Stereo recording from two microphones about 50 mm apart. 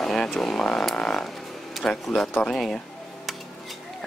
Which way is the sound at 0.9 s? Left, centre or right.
Centre.